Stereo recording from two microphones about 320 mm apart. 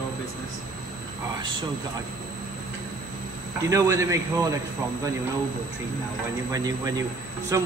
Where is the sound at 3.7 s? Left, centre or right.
Centre.